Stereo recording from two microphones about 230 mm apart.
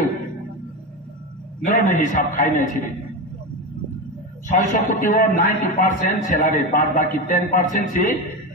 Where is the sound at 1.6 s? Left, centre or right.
Left.